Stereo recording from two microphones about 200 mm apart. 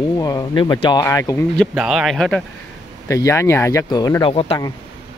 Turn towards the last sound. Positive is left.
turn(degrees=30)  # may be behind; listen again after turning